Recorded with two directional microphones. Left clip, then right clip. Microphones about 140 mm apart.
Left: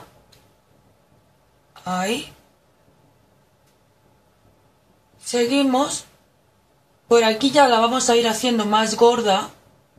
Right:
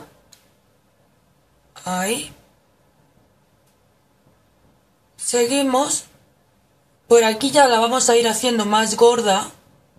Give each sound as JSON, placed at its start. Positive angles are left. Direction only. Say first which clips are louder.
{"t": 1.7, "sound": "a woman's voice", "louder": "right 1 dB", "side_deg": -25}
{"t": 5.2, "sound": "a woman's voice", "louder": "right 1 dB", "side_deg": -25}
{"t": 7.1, "sound": "a woman's voice", "louder": "right 2 dB", "side_deg": -25}